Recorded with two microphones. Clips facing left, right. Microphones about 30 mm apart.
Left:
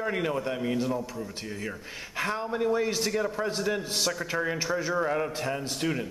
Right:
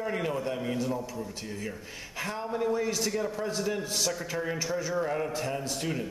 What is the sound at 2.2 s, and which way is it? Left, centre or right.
A man's voice, left.